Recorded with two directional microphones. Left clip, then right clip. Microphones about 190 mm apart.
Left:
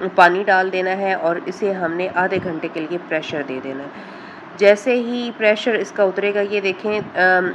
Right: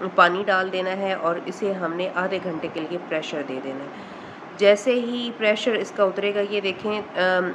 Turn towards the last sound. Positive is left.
turn(degrees=10)  # may be behind; listen again after turning